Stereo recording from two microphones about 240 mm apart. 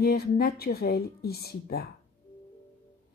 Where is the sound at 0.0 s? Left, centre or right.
Left.